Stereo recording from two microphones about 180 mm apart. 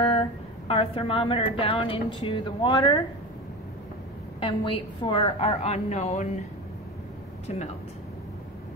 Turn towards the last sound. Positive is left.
turn(degrees=35)  # may be behind; listen again after turning